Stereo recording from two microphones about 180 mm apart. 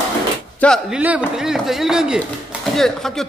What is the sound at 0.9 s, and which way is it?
A man's voice, 5° right (ahead or behind).